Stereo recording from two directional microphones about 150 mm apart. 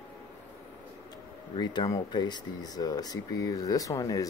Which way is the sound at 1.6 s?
30° left (ahead or behind).